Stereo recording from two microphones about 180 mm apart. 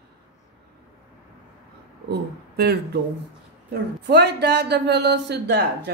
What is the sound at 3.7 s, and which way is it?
Speech, 70° right (ahead or behind).